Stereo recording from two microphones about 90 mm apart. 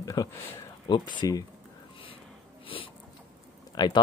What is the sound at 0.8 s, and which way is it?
Speech, 60° left (ahead or behind).